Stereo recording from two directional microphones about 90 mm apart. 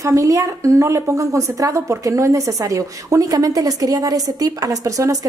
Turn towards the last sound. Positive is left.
turn(degrees=-40)  # may be behind; listen again after turning